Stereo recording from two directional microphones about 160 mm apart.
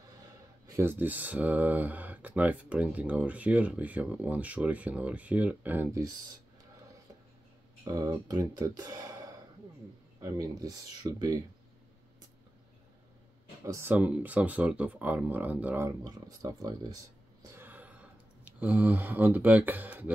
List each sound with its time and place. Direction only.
0.7 s speech: 15° right (ahead or behind)
5.9 s speech: 20° right (ahead or behind)
7.8 s speech: 20° right (ahead or behind)
13.7 s speech: 15° right (ahead or behind)
16.0 s a sound: 25° right (ahead or behind)
18.6 s speech: 10° right (ahead or behind)